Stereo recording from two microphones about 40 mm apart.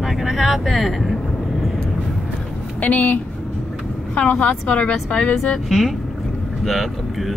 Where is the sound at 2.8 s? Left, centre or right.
Left.